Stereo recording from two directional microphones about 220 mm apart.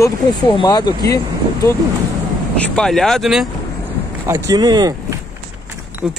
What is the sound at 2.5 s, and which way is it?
Speech, 5° left (ahead or behind).